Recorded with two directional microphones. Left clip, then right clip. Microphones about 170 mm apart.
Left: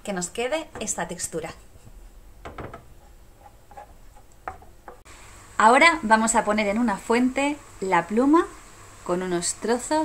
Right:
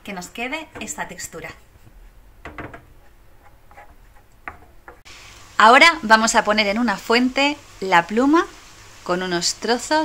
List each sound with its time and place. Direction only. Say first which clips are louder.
0.0 s a woman's voice: left 1 dB; 90° left
5.6 s a woman's voice: right 5 dB; centre (ahead or behind)